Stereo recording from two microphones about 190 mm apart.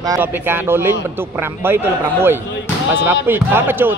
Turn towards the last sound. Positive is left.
turn(degrees=-10)  # may be behind; listen again after turning